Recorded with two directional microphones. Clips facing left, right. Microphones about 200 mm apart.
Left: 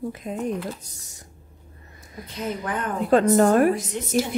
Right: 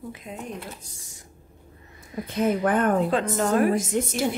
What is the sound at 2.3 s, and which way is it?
Speech, 50° right (ahead or behind).